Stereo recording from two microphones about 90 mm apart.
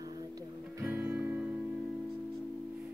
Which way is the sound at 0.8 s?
20° right (ahead or behind).